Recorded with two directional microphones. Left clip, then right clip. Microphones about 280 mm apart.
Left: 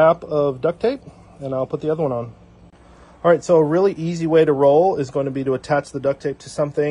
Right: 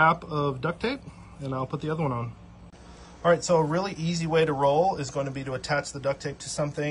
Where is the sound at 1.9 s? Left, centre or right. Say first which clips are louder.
Left 8 dB; right.